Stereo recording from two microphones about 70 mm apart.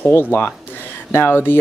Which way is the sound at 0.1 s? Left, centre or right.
Left.